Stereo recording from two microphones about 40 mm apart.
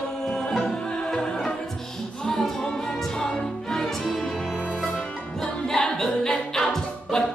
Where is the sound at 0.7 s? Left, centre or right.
Left; by 4.4 s centre.